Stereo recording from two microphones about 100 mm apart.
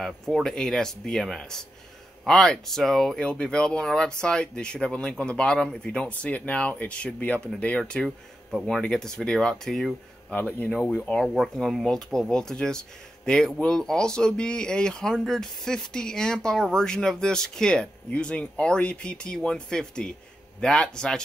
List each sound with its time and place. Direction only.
0.0 s speech: 5° left (ahead or behind)
11.1 s speech: centre (ahead or behind)